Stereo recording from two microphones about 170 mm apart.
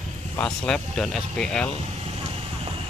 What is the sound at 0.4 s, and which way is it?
Speech, 5° left (ahead or behind).